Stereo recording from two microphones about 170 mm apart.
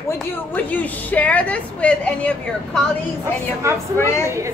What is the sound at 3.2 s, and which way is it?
Speech, 15° right (ahead or behind).